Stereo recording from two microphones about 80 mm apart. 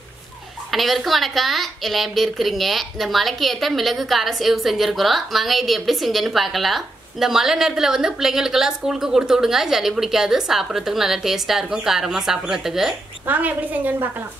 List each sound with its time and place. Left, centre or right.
0.7 s a woman's voice: centre
13.3 s a woman's voice: right